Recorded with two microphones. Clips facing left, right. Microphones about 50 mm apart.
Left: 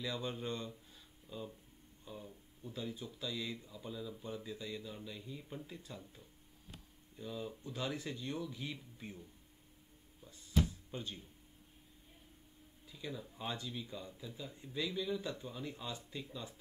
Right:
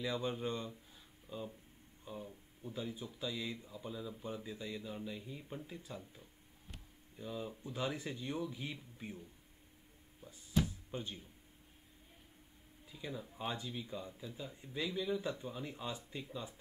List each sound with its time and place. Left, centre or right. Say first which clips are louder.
0.0 s speech: right 3 dB; centre
10.9 s speech: right 1 dB; centre
12.8 s speech: even; centre